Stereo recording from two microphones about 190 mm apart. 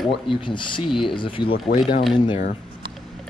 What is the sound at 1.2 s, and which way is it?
Speech, 25° left (ahead or behind).